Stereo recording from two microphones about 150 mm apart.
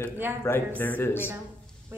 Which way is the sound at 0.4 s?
15° left (ahead or behind).